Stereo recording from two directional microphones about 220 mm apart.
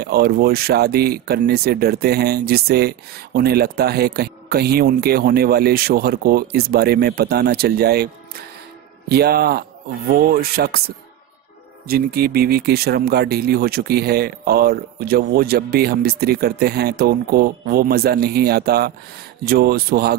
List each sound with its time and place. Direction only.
0.0 s speech: 45° right (ahead or behind)
11.9 s speech: 45° right (ahead or behind)